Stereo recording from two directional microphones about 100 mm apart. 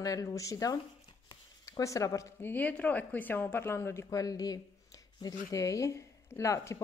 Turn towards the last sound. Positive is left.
turn(degrees=30)  # may be behind; listen again after turning